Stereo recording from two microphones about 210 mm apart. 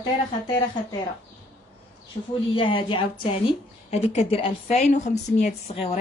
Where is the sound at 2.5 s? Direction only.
25° left (ahead or behind).